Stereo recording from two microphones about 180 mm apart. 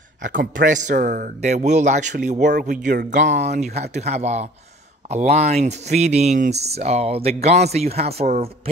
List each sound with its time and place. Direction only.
0.2 s speech: 50° right (ahead or behind)